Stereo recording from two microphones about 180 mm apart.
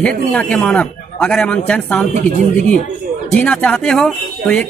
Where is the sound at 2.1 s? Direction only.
45° right (ahead or behind).